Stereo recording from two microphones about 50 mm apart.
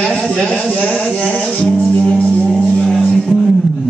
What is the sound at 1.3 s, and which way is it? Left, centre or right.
Music, left.